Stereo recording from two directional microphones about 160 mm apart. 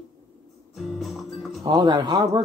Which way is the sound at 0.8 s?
Centre (ahead or behind).